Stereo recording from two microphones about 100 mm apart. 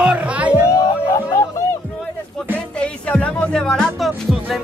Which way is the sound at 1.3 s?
30° left (ahead or behind).